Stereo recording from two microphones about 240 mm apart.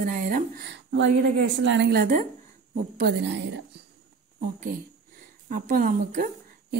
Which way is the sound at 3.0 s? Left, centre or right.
Right.